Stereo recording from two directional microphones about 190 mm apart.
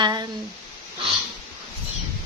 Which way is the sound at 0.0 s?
20° right (ahead or behind).